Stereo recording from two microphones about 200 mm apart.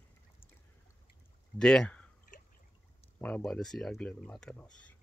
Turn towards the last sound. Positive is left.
turn(degrees=5)  # may be behind; listen again after turning